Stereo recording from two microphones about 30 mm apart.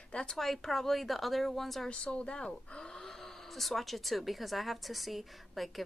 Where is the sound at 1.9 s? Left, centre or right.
Left.